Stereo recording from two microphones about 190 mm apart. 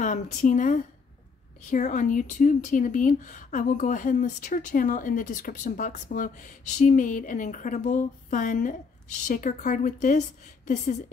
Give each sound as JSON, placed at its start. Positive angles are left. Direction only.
{"t": 0.0, "sound": "a woman's voice", "side_deg": 40}